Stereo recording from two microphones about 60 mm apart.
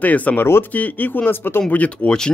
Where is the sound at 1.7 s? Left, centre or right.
Centre.